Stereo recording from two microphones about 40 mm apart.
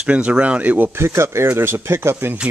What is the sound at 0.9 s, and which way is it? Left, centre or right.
Speech, right.